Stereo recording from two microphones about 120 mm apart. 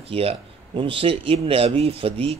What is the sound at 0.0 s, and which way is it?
Speech, 55° right (ahead or behind).